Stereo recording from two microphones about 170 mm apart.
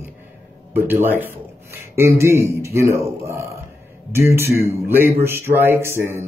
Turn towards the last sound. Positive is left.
turn(degrees=-15)  # may be behind; listen again after turning